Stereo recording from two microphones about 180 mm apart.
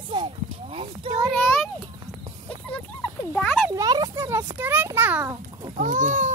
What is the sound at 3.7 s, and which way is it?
A child's voice, 20° right (ahead or behind).